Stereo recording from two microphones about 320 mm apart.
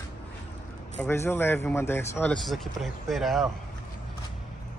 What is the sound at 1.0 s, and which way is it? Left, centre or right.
Speech, centre.